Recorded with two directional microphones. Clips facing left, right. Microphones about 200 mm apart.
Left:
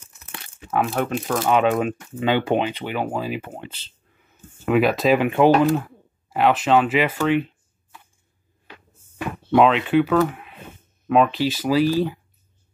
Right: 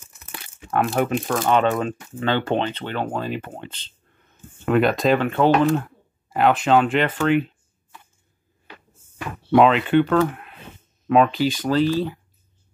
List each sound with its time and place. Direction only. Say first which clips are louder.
0.1 s speech: even; centre (ahead or behind)
5.8 s speech: even; centre (ahead or behind)
9.5 s speech: right 1 dB; centre (ahead or behind)